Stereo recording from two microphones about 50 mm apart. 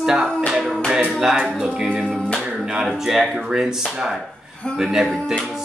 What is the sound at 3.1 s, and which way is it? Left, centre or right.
Speech, centre.